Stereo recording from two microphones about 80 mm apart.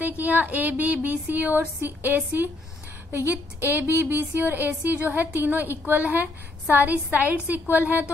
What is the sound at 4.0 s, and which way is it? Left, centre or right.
A woman's voice, right.